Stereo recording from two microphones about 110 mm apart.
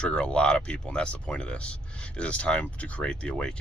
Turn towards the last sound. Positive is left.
turn(degrees=10)  # may be behind; listen again after turning